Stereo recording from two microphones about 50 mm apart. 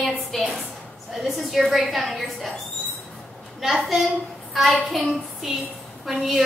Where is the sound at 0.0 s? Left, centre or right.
Centre.